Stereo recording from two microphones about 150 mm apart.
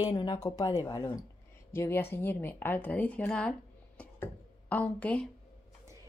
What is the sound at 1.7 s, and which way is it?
Speech, 15° left (ahead or behind).